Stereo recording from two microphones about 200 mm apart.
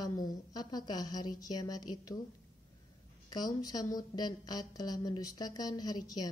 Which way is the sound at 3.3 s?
20° left (ahead or behind).